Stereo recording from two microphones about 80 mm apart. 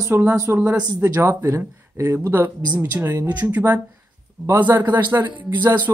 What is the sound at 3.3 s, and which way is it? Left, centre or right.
Speech, right.